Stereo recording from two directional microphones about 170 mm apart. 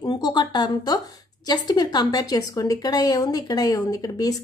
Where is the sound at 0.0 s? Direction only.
25° left (ahead or behind).